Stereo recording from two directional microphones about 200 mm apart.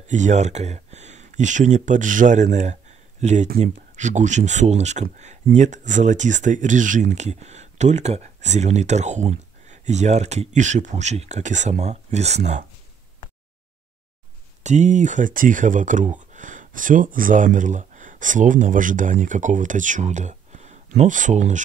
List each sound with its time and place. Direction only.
0.1 s speech: 35° right (ahead or behind)
14.6 s speech: 35° right (ahead or behind)